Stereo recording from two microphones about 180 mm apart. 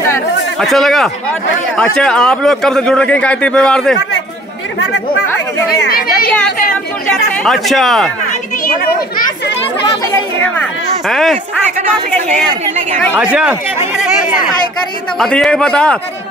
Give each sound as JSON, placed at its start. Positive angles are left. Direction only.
{"t": 0.6, "sound": "a man's voice", "side_deg": 0}
{"t": 5.9, "sound": "speech", "side_deg": 55}
{"t": 7.4, "sound": "a man's voice", "side_deg": 0}
{"t": 8.3, "sound": "a child's voice", "side_deg": 50}
{"t": 10.1, "sound": "a woman's voice", "side_deg": 10}
{"t": 13.1, "sound": "speech", "side_deg": -5}
{"t": 15.1, "sound": "a man's voice", "side_deg": 5}